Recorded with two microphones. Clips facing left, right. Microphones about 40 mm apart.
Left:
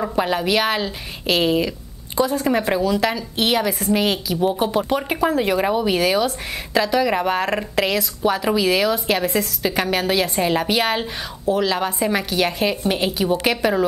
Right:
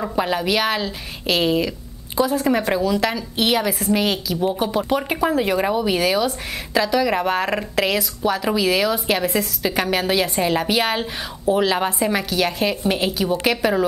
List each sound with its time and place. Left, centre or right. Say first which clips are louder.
0.0 s a woman's voice: left 1 dB; centre
11.5 s a woman's voice: right 1 dB; centre
12.0 s a woman's voice: even; centre